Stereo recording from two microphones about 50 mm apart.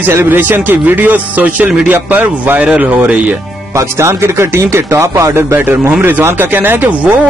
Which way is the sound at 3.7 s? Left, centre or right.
Right.